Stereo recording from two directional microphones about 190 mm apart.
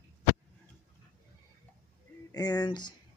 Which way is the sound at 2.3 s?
20° left (ahead or behind).